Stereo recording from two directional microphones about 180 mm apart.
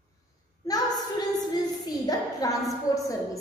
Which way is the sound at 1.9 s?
20° left (ahead or behind).